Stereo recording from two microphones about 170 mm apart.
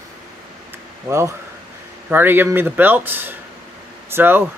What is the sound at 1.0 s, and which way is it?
Speech, 15° right (ahead or behind).